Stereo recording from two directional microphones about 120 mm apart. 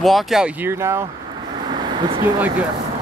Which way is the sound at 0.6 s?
25° right (ahead or behind).